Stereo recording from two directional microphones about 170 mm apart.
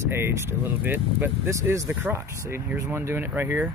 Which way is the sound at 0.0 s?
15° right (ahead or behind).